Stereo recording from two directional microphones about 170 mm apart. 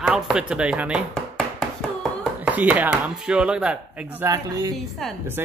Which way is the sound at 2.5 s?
10° right (ahead or behind).